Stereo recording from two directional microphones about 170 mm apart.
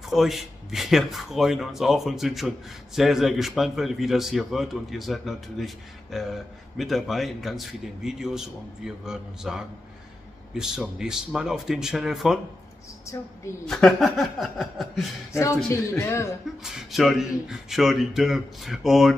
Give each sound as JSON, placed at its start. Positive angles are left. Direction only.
{"t": 0.1, "sound": "a man's voice", "side_deg": 0}
{"t": 13.7, "sound": "a man's voice", "side_deg": 0}
{"t": 15.3, "sound": "speech", "side_deg": 15}
{"t": 16.6, "sound": "a man's voice", "side_deg": 0}